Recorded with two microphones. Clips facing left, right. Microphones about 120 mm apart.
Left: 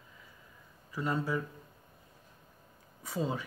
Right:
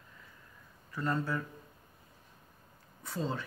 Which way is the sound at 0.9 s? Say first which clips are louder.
Left 1 dB; 10° left (ahead or behind).